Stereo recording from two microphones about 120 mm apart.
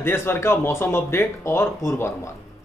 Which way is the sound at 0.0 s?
20° left (ahead or behind).